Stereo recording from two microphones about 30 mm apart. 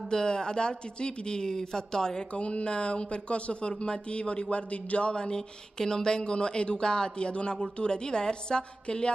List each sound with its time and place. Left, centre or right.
0.1 s speech: left
2.3 s speech: left
5.1 s speech: left